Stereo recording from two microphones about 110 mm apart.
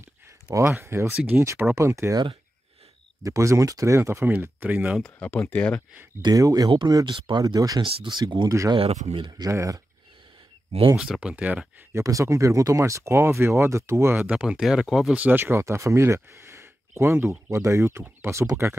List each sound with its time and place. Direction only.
0.5 s speech: 25° right (ahead or behind)
1.4 s speech: 25° right (ahead or behind)
3.2 s speech: 30° right (ahead or behind)
5.2 s speech: 15° left (ahead or behind)
6.2 s speech: 35° right (ahead or behind)
7.1 s speech: 45° right (ahead or behind)
7.4 s speech: 35° right (ahead or behind)
7.8 s speech: 45° right (ahead or behind)
8.5 s speech: 30° right (ahead or behind)
8.7 s speech: 75° right (ahead or behind)
9.2 s speech: 30° right (ahead or behind)
11.0 s speech: 10° right (ahead or behind)
11.9 s speech: 30° right (ahead or behind); by 15.1 s 5° right (ahead or behind)
15.1 s speech: 15° right (ahead or behind)